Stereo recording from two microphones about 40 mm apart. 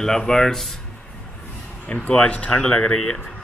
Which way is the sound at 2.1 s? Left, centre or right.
Left.